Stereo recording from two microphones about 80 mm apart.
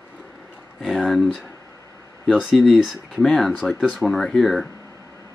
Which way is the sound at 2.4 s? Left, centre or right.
Centre.